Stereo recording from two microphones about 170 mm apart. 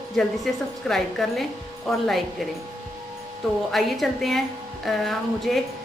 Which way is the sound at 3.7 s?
Centre (ahead or behind).